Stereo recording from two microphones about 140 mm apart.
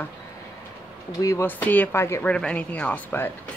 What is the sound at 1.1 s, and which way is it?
Speech, 20° left (ahead or behind).